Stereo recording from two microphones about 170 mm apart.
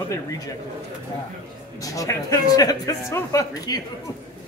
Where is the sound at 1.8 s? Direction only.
20° left (ahead or behind).